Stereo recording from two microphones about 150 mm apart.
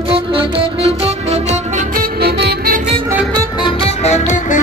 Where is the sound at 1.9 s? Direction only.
90° right.